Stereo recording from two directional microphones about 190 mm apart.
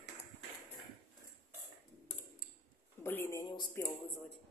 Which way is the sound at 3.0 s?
10° left (ahead or behind).